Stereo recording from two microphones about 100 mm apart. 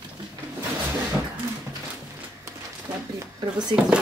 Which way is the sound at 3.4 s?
45° right (ahead or behind).